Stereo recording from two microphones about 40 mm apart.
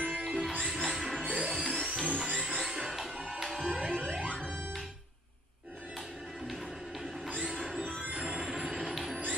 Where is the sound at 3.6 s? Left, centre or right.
Right.